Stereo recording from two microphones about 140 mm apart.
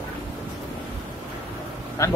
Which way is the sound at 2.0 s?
20° left (ahead or behind).